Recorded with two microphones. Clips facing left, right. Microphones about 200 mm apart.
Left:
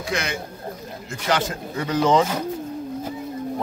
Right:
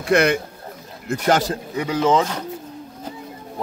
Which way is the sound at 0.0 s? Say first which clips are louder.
Right 10 dB; 60° right (ahead or behind).